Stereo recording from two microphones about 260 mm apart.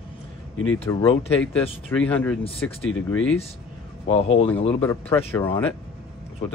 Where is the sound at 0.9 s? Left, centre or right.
Centre.